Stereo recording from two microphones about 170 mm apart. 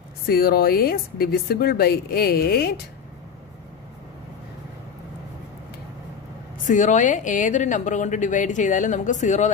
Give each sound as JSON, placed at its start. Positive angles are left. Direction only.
{"t": 0.3, "sound": "speech", "side_deg": 60}
{"t": 6.6, "sound": "a woman's voice", "side_deg": 45}